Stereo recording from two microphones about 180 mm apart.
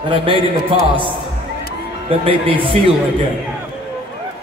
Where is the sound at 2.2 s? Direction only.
30° right (ahead or behind).